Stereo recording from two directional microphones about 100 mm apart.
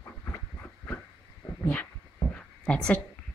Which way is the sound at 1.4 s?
45° left (ahead or behind).